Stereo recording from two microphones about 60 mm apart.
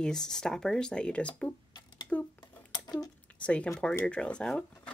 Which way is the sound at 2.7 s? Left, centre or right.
Left.